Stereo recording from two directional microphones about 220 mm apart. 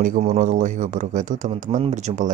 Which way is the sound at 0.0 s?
35° right (ahead or behind).